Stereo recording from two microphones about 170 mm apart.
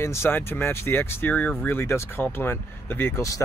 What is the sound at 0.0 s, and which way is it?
Speech, 15° left (ahead or behind).